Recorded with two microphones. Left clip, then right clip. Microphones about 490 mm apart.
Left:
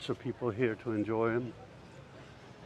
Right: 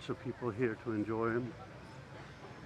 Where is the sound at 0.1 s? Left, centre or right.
Centre.